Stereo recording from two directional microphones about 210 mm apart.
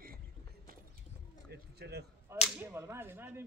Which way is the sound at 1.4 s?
50° right (ahead or behind).